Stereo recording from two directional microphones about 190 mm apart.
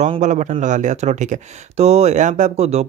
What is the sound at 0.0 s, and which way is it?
Speech, 40° right (ahead or behind).